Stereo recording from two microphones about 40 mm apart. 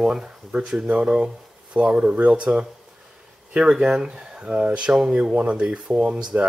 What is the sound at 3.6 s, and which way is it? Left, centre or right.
Speech, centre.